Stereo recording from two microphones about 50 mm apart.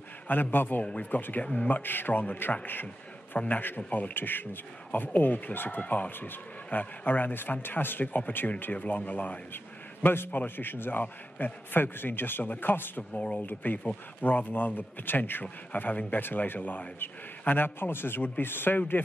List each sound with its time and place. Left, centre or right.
0.3 s speech: left
1.4 s speech: left
1.7 s a man's voice: left
10.0 s a man's voice: left
13.1 s speech: centre
13.5 s speech: left
15.8 s speech: left
16.2 s a man's voice: left